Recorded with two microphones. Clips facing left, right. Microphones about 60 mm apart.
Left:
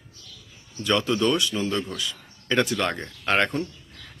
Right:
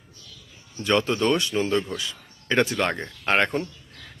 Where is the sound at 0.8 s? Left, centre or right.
Right.